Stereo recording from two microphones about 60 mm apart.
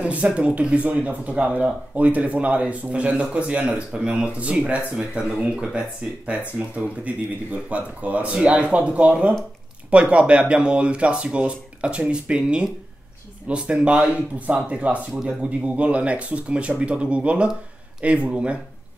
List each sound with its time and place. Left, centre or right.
0.0 s speech: right